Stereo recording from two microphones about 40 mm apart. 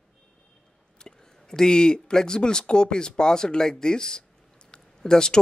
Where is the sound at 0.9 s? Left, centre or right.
Centre.